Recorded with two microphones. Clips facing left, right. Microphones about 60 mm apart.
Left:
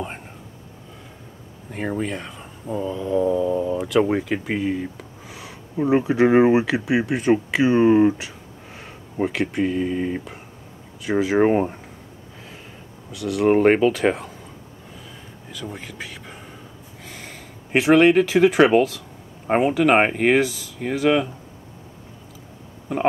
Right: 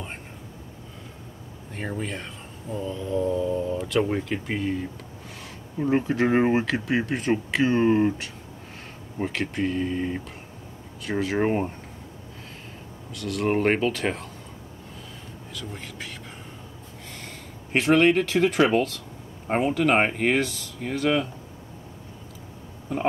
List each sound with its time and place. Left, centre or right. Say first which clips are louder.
2.0 s speech: left 4 dB; centre
5.9 s speech: left 5 dB; centre
11.4 s speech: left 6 dB; left
13.1 s speech: left 7 dB; centre
15.6 s speech: left 5 dB; centre
17.1 s a sound: left 2 dB; centre
18.7 s speech: left 6 dB; centre
19.4 s speech: left 5 dB; left
19.7 s speech: left 3 dB; centre